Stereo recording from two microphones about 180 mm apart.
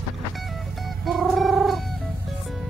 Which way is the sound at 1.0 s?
Centre (ahead or behind).